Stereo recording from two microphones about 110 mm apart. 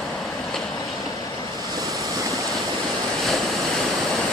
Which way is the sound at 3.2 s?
Centre (ahead or behind).